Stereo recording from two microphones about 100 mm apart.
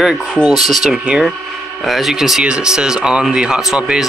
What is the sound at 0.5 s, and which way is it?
Speech, 5° right (ahead or behind).